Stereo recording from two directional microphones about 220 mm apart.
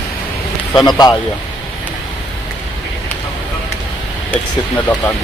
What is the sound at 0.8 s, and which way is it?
Speech, 20° left (ahead or behind).